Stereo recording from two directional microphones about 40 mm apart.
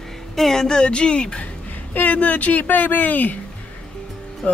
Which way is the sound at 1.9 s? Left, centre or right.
Left.